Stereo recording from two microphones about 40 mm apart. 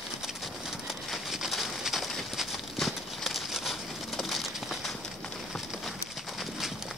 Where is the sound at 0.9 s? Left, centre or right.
Centre.